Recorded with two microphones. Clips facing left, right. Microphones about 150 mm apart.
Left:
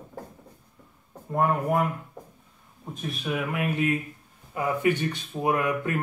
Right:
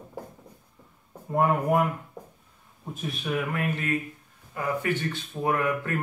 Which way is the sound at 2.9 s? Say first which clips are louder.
Even; centre (ahead or behind).